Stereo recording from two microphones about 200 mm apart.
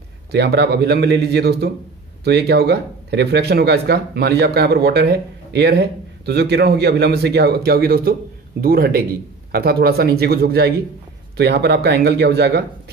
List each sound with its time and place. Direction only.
0.3 s speech: 55° right (ahead or behind)